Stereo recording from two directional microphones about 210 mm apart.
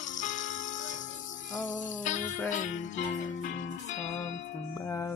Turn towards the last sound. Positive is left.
turn(degrees=35)  # may be behind; listen again after turning